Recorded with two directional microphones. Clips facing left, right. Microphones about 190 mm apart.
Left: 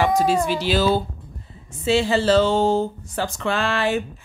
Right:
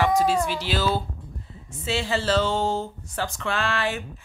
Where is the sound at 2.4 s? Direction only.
30° left (ahead or behind).